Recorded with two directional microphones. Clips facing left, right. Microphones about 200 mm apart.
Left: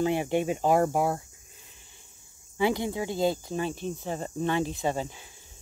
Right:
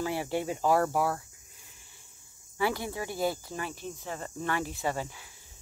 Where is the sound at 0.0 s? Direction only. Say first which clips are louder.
Left 5 dB; 20° left (ahead or behind).